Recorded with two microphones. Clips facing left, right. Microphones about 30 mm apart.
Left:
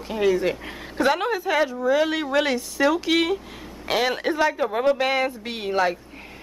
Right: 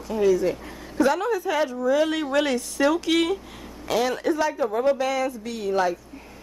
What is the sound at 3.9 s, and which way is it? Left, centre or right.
A woman's voice, left.